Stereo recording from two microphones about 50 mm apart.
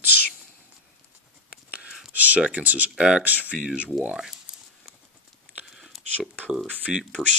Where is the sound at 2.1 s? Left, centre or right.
Right; by 4.6 s centre.